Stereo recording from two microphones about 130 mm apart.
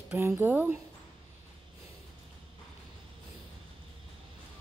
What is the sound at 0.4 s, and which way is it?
Speech, 15° right (ahead or behind).